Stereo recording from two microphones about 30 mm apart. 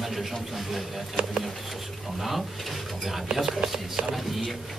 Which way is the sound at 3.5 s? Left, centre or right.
Right.